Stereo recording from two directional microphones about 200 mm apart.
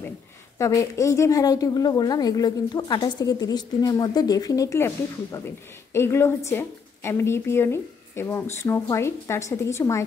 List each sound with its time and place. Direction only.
0.6 s a woman's voice: 15° left (ahead or behind)